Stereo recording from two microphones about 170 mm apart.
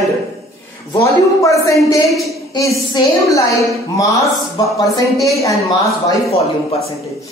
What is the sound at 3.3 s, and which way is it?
Speech, 20° left (ahead or behind).